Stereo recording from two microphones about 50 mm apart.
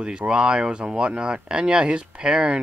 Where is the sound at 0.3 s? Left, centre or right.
Centre.